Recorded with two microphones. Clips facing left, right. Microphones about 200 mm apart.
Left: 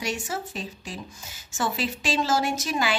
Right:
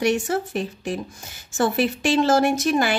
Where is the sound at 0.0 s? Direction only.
60° right (ahead or behind).